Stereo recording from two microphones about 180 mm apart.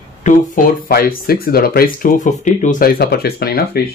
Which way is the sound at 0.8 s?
55° left (ahead or behind).